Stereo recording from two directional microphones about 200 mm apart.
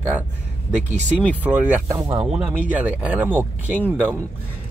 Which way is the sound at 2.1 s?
30° right (ahead or behind).